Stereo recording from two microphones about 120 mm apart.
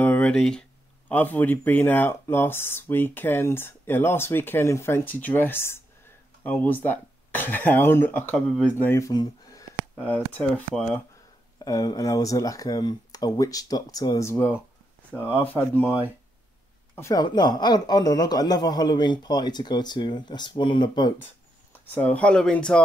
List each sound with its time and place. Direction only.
0.0 s speech: 15° left (ahead or behind)
9.1 s a sound: 30° left (ahead or behind)
9.9 s speech: 15° left (ahead or behind)
11.6 s a man's voice: 35° left (ahead or behind)
15.3 s speech: 15° left (ahead or behind)
17.2 s a man's voice: 35° left (ahead or behind)
21.8 s speech: 15° left (ahead or behind)